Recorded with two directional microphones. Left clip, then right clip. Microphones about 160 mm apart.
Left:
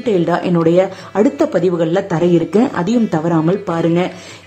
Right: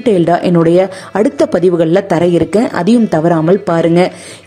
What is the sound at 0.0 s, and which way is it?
A woman's voice, 30° right (ahead or behind).